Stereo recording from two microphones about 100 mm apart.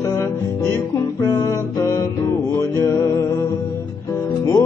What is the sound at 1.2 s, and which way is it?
Music, 30° left (ahead or behind).